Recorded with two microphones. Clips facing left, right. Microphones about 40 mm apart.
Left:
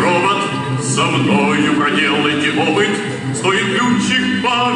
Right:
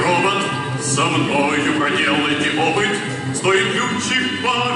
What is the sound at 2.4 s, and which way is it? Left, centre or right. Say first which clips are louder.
Music: left 3 dB; left.